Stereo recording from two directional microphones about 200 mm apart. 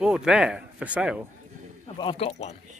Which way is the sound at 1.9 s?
25° left (ahead or behind).